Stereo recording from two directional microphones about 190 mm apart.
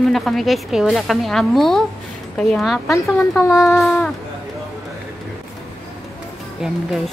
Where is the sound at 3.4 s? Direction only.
15° left (ahead or behind).